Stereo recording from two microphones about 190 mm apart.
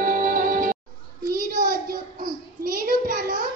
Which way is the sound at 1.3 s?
50° right (ahead or behind).